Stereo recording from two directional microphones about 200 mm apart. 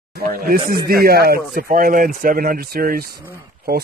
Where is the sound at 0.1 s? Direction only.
50° right (ahead or behind).